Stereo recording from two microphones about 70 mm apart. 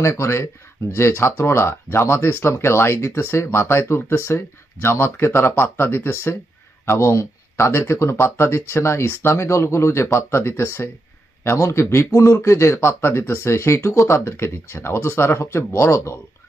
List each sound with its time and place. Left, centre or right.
0.0 s a man's voice: left